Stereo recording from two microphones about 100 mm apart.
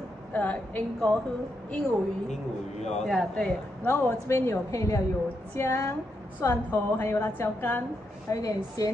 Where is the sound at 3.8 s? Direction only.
15° left (ahead or behind).